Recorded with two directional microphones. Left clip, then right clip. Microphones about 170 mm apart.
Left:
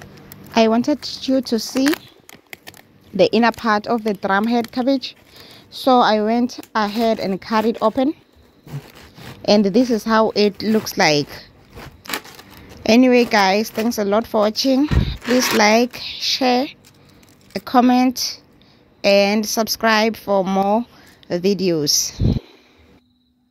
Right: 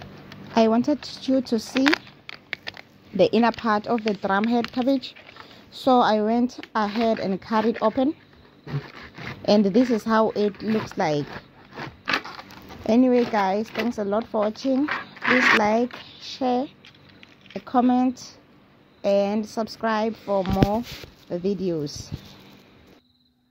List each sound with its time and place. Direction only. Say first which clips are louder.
0.5 s speech: left 4 dB; 30° left (ahead or behind)
2.0 s a sound: right 2 dB; 20° right (ahead or behind)
3.2 s speech: left 4 dB; 30° left (ahead or behind)
9.4 s speech: left 4 dB; 30° left (ahead or behind)
12.8 s speech: left 6 dB; 35° left (ahead or behind)